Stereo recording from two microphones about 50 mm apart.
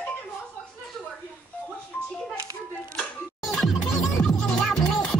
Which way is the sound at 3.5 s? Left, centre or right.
Centre.